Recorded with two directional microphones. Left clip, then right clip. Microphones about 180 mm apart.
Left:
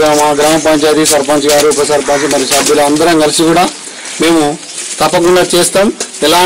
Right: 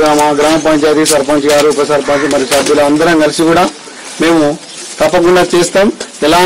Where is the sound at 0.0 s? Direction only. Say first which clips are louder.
Even; centre (ahead or behind).